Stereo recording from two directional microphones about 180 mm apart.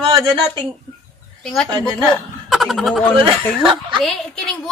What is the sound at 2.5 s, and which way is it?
Speech, centre (ahead or behind).